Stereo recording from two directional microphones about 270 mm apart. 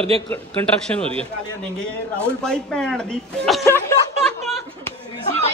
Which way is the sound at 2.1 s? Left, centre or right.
Centre.